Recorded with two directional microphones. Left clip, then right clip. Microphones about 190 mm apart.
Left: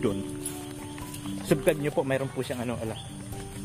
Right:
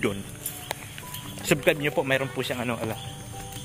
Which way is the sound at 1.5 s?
5° left (ahead or behind).